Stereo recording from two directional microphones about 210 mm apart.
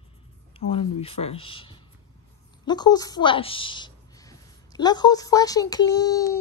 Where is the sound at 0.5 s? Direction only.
25° left (ahead or behind).